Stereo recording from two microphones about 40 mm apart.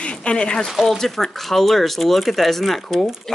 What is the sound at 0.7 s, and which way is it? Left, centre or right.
A woman's voice, centre.